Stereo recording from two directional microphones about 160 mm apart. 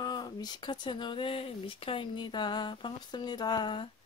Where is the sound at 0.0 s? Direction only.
25° left (ahead or behind).